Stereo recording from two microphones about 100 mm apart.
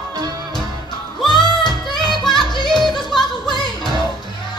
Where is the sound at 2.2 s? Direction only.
5° left (ahead or behind).